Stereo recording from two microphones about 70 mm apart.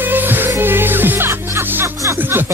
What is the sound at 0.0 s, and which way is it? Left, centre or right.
Music, right.